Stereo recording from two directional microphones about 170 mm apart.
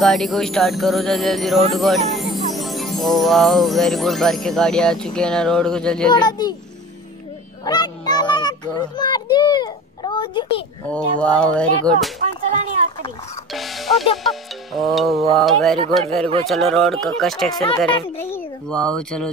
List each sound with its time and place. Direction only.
0.0 s speech: centre (ahead or behind)
6.1 s a child's voice: 25° left (ahead or behind)
7.6 s child singing: 25° left (ahead or behind)
10.9 s speech: 5° left (ahead or behind)
13.5 s music: centre (ahead or behind)
14.1 s speech: centre (ahead or behind)